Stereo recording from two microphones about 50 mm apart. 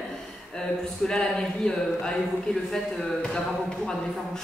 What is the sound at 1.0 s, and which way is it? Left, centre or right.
Speech, centre.